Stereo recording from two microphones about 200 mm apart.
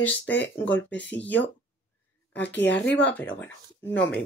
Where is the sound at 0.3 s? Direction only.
65° left (ahead or behind).